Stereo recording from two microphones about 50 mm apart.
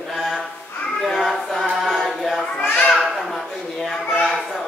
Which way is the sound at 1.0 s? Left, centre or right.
Centre.